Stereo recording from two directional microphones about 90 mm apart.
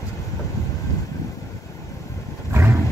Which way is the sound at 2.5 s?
30° right (ahead or behind).